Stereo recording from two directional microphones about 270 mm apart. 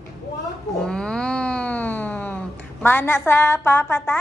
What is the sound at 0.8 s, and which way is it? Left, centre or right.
Speech, centre.